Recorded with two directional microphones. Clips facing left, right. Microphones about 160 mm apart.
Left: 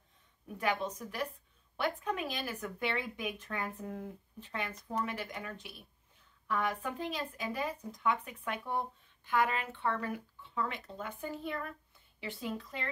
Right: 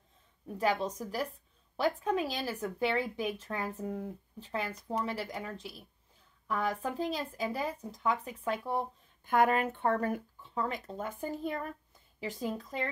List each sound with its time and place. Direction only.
0.6 s speech: 35° right (ahead or behind)
9.3 s speech: 50° right (ahead or behind)